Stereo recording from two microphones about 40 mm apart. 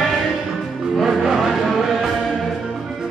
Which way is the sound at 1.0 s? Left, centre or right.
Centre.